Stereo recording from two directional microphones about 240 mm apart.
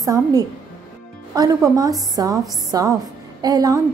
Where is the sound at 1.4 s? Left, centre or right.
Centre.